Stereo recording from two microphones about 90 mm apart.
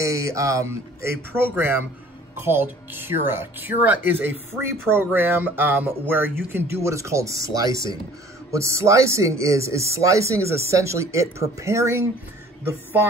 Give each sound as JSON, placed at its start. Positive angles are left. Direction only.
{"t": 0.0, "sound": "speech", "side_deg": -35}